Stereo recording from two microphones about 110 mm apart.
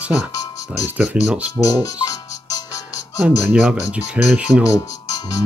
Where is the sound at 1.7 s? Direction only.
30° left (ahead or behind).